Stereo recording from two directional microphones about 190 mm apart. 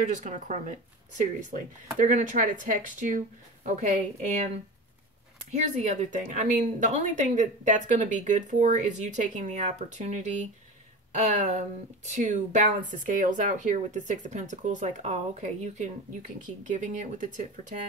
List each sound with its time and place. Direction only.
0.2 s a woman's voice: 40° right (ahead or behind)
5.5 s a woman's voice: 40° right (ahead or behind)